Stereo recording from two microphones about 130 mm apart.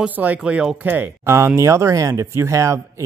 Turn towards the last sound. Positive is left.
turn(degrees=-25)  # may be behind; listen again after turning